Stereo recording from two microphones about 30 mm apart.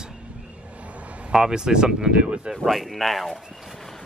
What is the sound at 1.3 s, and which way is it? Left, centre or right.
Speech, right.